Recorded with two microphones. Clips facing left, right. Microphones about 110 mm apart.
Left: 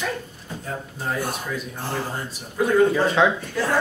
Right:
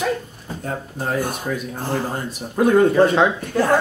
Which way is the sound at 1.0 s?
50° right (ahead or behind).